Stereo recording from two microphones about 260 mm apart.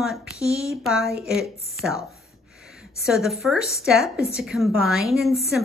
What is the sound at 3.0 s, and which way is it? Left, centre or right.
Speech, centre.